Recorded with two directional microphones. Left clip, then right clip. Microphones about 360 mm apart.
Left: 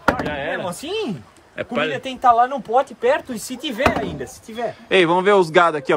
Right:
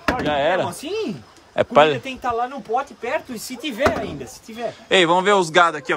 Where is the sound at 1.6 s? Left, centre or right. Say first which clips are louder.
Right 8 dB; centre.